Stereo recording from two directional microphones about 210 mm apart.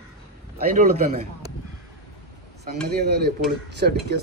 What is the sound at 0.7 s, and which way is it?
Speech, 40° right (ahead or behind).